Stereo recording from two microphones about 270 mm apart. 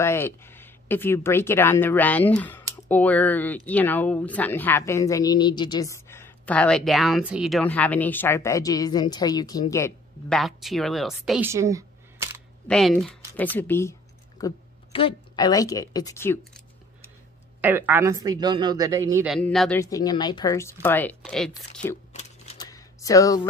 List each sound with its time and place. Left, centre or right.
0.0 s speech: centre
12.6 s a woman's voice: centre
14.4 s a woman's voice: centre
17.6 s a woman's voice: centre
19.2 s a woman's voice: centre
19.8 s a woman's voice: centre
22.1 s typewriter: left
22.7 s a sound: centre